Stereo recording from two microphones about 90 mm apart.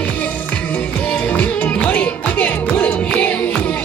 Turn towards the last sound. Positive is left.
turn(degrees=15)  # may be behind; listen again after turning